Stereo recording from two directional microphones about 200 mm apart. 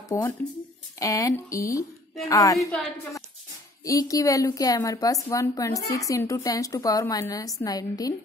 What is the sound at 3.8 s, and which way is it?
A woman's voice, 15° left (ahead or behind).